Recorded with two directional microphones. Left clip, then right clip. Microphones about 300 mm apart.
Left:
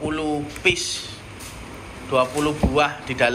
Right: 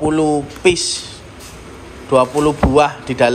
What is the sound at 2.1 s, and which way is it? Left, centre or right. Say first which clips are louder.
Speech: right 7 dB; centre.